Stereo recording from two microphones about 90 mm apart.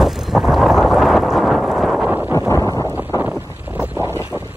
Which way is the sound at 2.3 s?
35° left (ahead or behind).